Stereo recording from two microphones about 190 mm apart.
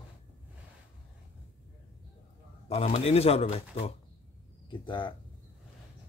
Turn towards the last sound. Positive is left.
turn(degrees=25)  # may be behind; listen again after turning